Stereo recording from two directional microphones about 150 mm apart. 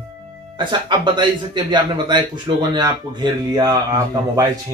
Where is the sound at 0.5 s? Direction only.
30° right (ahead or behind).